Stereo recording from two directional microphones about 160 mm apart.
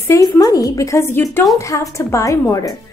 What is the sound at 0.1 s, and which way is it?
A woman's voice, 25° left (ahead or behind).